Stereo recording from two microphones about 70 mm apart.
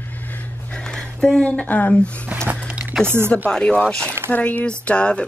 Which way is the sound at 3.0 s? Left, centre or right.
Right.